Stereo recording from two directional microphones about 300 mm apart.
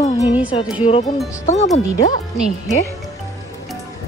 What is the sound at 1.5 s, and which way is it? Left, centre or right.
Speech, left.